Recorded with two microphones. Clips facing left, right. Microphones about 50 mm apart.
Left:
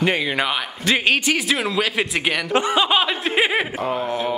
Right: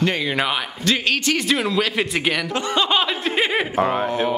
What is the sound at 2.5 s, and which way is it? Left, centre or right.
Speech, centre.